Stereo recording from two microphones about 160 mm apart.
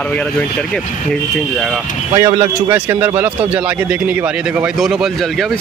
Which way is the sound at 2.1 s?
25° right (ahead or behind).